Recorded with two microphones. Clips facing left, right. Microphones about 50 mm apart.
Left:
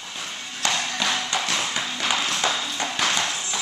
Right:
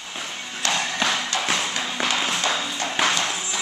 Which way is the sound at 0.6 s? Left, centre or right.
Centre.